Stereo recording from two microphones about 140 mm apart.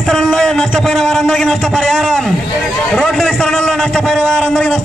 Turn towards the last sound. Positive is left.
turn(degrees=5)  # may be behind; listen again after turning